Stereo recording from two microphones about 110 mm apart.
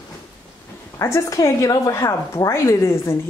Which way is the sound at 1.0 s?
30° left (ahead or behind).